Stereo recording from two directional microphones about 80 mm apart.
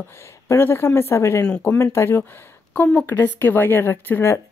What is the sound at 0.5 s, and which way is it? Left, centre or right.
Speech, left.